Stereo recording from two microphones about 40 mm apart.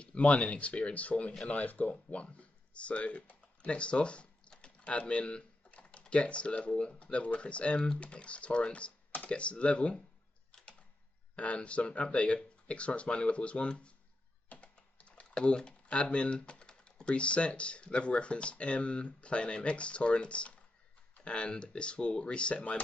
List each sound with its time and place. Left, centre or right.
0.0 s speech: left
11.3 s speech: left
14.5 s typing: left
15.3 s speech: left